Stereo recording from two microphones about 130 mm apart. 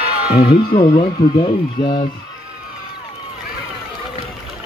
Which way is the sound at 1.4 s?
35° left (ahead or behind).